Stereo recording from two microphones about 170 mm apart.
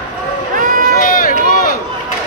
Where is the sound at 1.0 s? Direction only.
55° left (ahead or behind).